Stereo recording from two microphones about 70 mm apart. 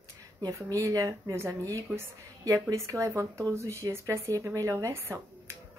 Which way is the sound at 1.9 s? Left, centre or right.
Right.